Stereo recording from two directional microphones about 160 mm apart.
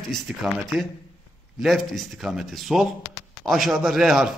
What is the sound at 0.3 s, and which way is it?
Speech, 5° right (ahead or behind).